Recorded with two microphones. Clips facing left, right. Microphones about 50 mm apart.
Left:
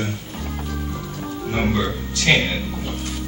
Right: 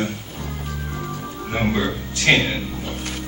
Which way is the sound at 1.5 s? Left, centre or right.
Right.